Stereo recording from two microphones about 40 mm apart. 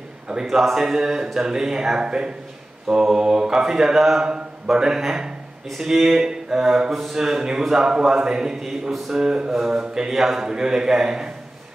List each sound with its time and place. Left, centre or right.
0.5 s speech: centre
4.7 s a man's voice: centre
6.9 s speech: centre
7.2 s speech: centre
9.8 s speech: centre
10.1 s speech: centre
10.4 s speech: centre